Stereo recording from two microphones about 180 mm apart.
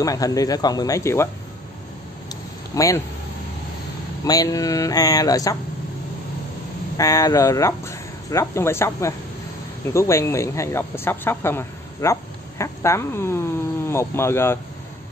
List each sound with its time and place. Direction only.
0.0 s speech: 20° left (ahead or behind)
2.7 s speech: 20° left (ahead or behind)
4.2 s speech: 20° left (ahead or behind)
7.0 s speech: 20° left (ahead or behind)